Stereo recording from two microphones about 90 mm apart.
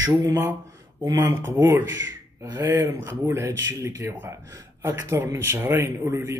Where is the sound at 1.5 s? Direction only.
35° right (ahead or behind).